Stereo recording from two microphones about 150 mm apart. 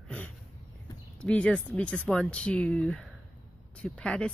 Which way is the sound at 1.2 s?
10° left (ahead or behind).